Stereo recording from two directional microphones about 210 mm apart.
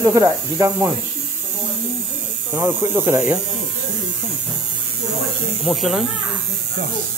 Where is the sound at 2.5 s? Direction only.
10° right (ahead or behind).